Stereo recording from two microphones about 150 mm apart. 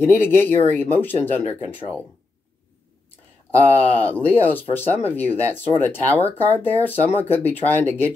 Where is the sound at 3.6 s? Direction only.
10° left (ahead or behind).